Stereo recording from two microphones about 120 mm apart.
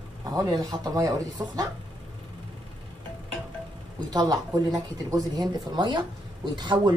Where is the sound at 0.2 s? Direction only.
30° right (ahead or behind).